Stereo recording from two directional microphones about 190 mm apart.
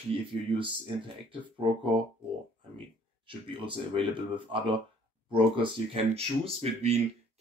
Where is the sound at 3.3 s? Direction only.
25° right (ahead or behind).